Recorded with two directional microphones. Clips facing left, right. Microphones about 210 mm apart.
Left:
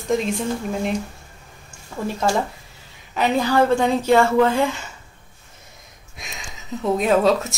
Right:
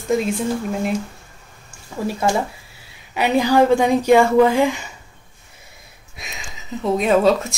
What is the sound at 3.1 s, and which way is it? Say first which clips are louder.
A woman's voice: right 3 dB; 10° right (ahead or behind).